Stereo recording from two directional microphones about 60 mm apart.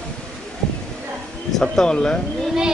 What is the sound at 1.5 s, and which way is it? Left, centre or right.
Speech, centre.